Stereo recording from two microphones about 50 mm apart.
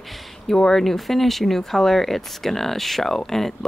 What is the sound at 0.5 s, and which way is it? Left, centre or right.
A woman's voice, centre.